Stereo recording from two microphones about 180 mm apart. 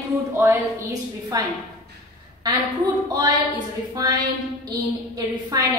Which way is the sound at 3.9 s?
20° right (ahead or behind).